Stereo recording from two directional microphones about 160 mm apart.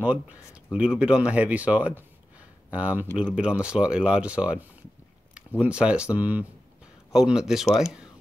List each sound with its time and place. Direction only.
0.0 s speech: 10° right (ahead or behind)